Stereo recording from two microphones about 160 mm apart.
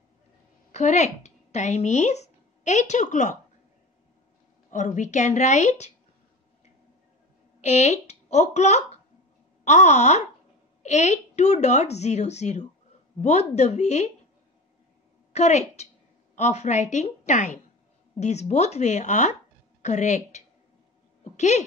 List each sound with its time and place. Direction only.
0.7 s a woman's voice: 45° left (ahead or behind)
4.6 s a woman's voice: 50° left (ahead or behind)
7.6 s a woman's voice: 45° left (ahead or behind)
15.3 s a woman's voice: 45° left (ahead or behind)
21.2 s a sound: 45° left (ahead or behind)